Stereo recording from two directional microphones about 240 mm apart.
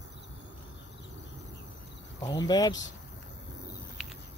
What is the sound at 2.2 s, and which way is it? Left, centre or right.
Speech, centre.